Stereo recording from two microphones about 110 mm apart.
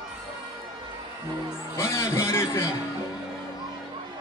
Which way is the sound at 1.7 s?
25° left (ahead or behind).